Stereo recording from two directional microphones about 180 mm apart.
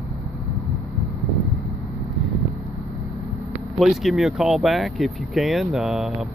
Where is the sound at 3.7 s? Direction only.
Centre (ahead or behind).